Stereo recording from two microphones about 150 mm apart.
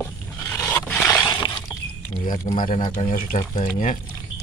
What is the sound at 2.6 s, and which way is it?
Speech, 65° left (ahead or behind).